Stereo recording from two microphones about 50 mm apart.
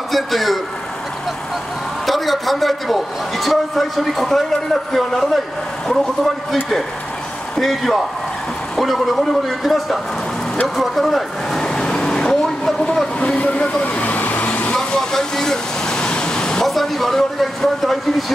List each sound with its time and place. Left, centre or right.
0.1 s a man's voice: centre
2.0 s a man's voice: centre
10.8 s vehicle: centre
13.2 s vehicle: left
14.8 s a sound: centre
16.6 s a man's voice: centre